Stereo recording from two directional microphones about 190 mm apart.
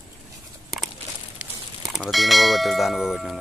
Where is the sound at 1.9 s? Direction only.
Centre (ahead or behind).